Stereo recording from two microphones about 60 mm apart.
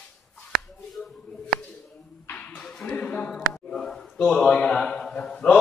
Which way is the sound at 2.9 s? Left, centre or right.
Left.